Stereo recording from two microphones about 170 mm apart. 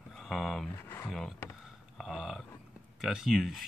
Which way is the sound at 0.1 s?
Centre (ahead or behind).